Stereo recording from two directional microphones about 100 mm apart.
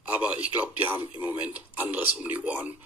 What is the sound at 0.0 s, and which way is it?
Speech, 15° right (ahead or behind).